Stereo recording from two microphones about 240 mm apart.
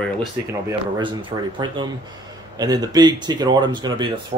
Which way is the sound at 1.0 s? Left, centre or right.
Right.